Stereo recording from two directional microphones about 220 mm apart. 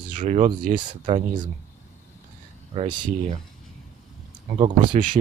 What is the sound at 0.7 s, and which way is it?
Speech, 25° right (ahead or behind).